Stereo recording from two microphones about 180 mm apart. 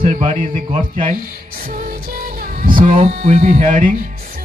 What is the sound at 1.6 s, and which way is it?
Music, 55° right (ahead or behind).